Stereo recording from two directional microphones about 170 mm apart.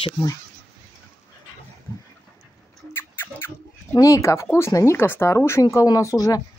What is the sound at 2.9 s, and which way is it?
Speech, 15° left (ahead or behind).